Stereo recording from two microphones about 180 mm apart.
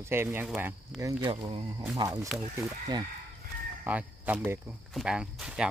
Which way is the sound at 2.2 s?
Centre (ahead or behind).